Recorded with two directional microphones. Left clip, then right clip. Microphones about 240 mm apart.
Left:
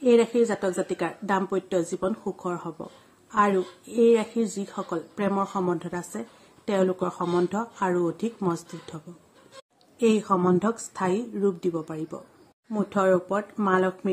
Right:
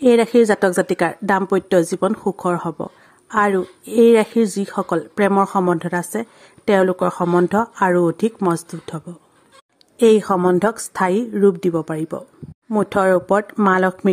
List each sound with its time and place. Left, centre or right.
0.0 s a woman's voice: right